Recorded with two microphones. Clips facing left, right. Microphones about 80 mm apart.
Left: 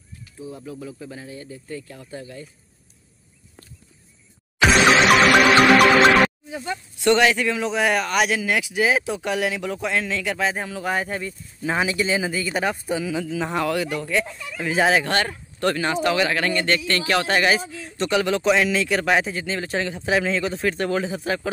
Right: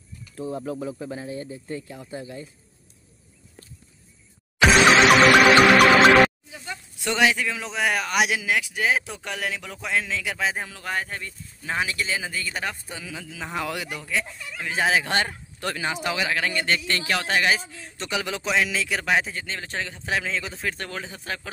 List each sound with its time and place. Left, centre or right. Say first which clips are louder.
0.5 s speech: right 5 dB; right
4.6 s music: even; centre
6.5 s a sound: left 8 dB; left
7.0 s speech: left 4 dB; centre
8.5 s speech: left 3 dB; centre
10.8 s speech: left 5 dB; centre
13.7 s speech: left 8 dB; centre
14.0 s speech: left 5 dB; centre
15.0 s speech: left 2 dB; centre
17.2 s speech: left 1 dB; centre